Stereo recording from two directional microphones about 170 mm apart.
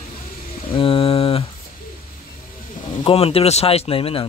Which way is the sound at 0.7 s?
30° left (ahead or behind).